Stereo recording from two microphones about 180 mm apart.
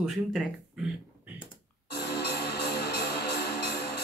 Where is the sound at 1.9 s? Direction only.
65° left (ahead or behind).